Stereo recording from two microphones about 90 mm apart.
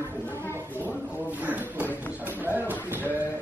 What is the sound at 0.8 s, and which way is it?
Speech, 20° right (ahead or behind).